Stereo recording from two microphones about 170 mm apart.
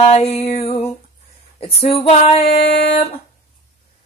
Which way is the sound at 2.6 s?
70° left (ahead or behind).